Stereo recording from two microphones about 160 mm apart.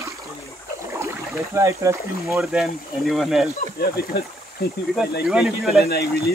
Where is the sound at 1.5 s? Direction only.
20° right (ahead or behind).